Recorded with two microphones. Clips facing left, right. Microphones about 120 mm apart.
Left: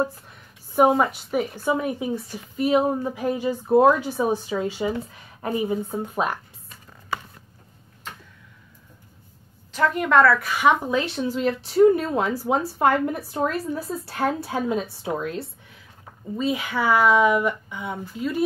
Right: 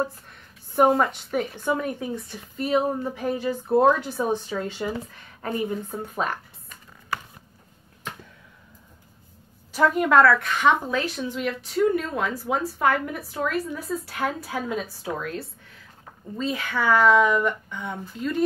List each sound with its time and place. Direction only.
0.7 s speech: 5° left (ahead or behind)
9.7 s a woman's voice: 5° right (ahead or behind); by 11.0 s 10° left (ahead or behind)
11.0 s a woman's voice: 25° left (ahead or behind)
16.3 s speech: 10° left (ahead or behind)